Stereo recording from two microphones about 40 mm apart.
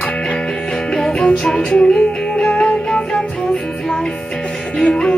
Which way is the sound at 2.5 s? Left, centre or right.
Left.